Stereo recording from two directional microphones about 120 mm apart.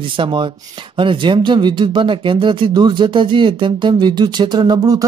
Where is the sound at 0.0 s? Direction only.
45° right (ahead or behind).